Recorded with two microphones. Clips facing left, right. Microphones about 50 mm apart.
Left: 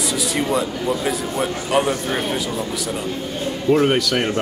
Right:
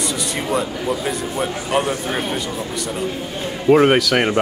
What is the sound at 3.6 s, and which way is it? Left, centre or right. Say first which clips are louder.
Speech: right 4 dB; right.